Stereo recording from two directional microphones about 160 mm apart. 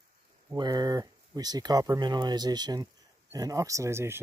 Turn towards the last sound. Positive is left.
turn(degrees=-15)  # may be behind; listen again after turning